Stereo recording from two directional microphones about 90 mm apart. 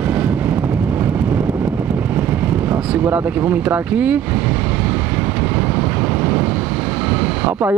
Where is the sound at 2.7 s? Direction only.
20° right (ahead or behind).